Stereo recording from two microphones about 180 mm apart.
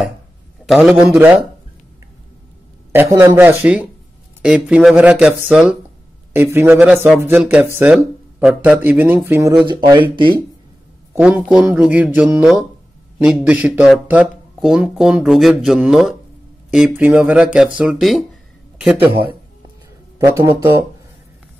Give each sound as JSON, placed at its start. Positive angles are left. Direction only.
{"t": 0.7, "sound": "speech", "side_deg": -5}
{"t": 3.2, "sound": "speech", "side_deg": -15}
{"t": 9.7, "sound": "speech", "side_deg": -25}
{"t": 11.1, "sound": "speech", "side_deg": -10}
{"t": 20.2, "sound": "speech", "side_deg": -15}